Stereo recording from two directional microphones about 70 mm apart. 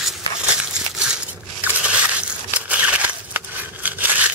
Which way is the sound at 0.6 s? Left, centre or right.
Centre.